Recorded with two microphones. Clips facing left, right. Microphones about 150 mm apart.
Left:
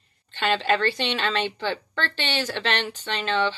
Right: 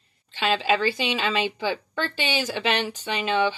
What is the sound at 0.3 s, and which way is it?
A woman's voice, 5° right (ahead or behind).